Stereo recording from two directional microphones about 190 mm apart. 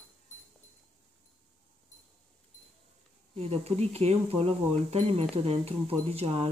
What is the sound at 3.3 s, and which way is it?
Speech, 30° right (ahead or behind).